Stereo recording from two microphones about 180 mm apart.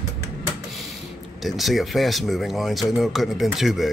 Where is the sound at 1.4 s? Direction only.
Centre (ahead or behind).